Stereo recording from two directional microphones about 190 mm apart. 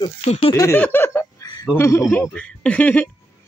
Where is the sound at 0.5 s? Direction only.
10° left (ahead or behind).